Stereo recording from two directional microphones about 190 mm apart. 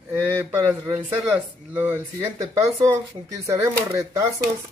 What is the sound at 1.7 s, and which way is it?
Speech, 10° right (ahead or behind).